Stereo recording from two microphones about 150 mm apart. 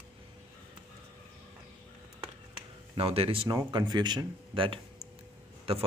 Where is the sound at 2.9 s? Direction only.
40° right (ahead or behind).